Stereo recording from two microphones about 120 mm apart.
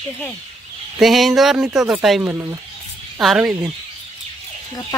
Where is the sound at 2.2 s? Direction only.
20° right (ahead or behind).